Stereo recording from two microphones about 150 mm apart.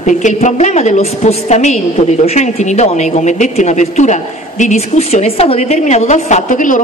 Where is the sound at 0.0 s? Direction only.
55° left (ahead or behind).